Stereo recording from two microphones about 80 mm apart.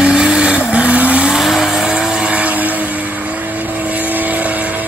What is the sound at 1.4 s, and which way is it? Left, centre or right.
Vehicle, centre.